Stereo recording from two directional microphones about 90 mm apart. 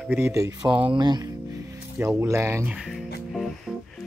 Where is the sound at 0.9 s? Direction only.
50° right (ahead or behind).